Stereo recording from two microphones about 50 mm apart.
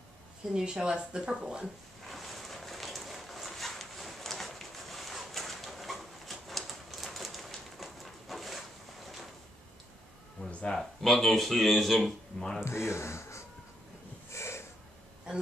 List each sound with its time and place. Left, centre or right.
0.6 s speech: centre
2.0 s a sound: centre
10.4 s a sound: centre
10.8 s speech: centre
12.6 s speech: left
14.3 s snort: left